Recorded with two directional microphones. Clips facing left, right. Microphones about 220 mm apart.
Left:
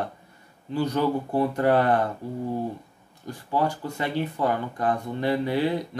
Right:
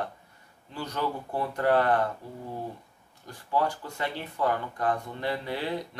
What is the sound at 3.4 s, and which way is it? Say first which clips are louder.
Speech: left 3 dB; 20° left (ahead or behind).